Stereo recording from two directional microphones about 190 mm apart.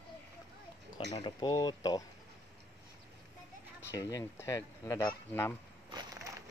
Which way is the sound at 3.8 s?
15° left (ahead or behind).